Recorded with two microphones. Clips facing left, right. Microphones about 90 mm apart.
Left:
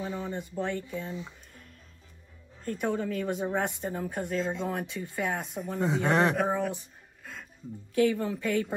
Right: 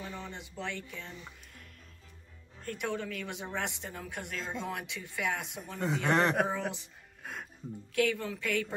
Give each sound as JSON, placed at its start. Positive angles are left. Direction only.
{"t": 0.0, "sound": "a sound", "side_deg": 15}
{"t": 0.3, "sound": "speech", "side_deg": 45}
{"t": 0.8, "sound": "speech", "side_deg": 20}
{"t": 2.6, "sound": "speech", "side_deg": 35}
{"t": 5.8, "sound": "speech", "side_deg": 15}
{"t": 6.5, "sound": "speech", "side_deg": 45}
{"t": 7.9, "sound": "speech", "side_deg": 30}